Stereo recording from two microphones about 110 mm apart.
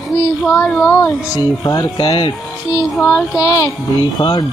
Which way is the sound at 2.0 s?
50° left (ahead or behind).